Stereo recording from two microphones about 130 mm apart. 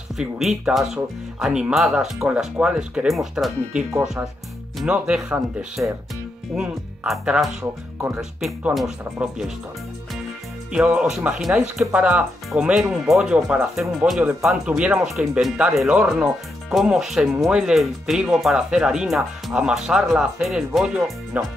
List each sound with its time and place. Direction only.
0.2 s speech: 5° right (ahead or behind)
10.7 s speech: 10° right (ahead or behind)